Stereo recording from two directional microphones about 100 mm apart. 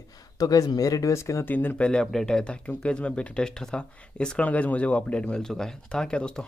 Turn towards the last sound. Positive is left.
turn(degrees=10)  # may be behind; listen again after turning